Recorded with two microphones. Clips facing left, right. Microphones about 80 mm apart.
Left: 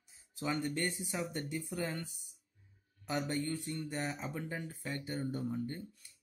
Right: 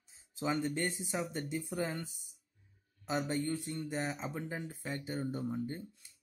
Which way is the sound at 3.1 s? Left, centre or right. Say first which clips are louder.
Right 2 dB; centre.